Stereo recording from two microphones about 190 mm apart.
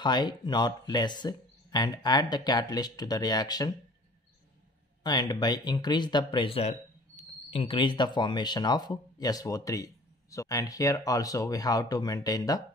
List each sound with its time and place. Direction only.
0.0 s speech: 20° left (ahead or behind)
5.0 s speech: 20° left (ahead or behind)